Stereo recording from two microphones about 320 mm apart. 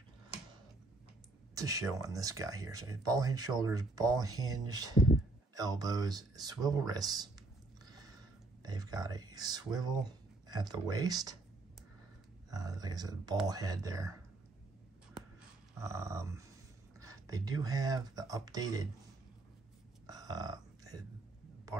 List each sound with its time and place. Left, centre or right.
1.5 s speech: centre
12.4 s speech: centre
15.8 s speech: centre
20.1 s burping: centre